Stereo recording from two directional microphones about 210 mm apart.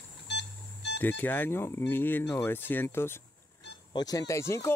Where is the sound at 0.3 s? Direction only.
55° left (ahead or behind).